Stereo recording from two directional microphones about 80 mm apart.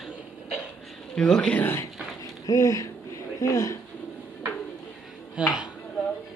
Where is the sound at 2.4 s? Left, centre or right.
Left.